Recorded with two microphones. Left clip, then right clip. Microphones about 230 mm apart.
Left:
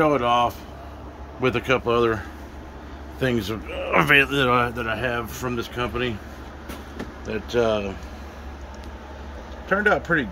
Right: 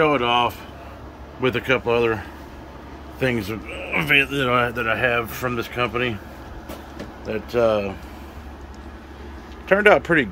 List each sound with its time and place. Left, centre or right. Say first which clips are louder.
0.0 s speech: right 1 dB; centre
3.2 s speech: right 1 dB; centre
7.2 s speech: right 2 dB; centre
9.7 s speech: right 5 dB; centre